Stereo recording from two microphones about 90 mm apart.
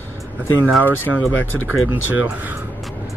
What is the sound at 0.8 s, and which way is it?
Speech, 20° right (ahead or behind).